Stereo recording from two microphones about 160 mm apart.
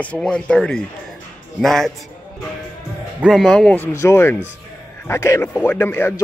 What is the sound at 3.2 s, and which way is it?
Speech, centre (ahead or behind).